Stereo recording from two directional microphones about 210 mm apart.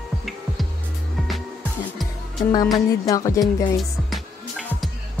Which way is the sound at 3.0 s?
15° left (ahead or behind).